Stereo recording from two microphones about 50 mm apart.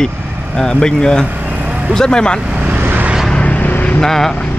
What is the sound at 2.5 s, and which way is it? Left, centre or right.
Vehicle, right.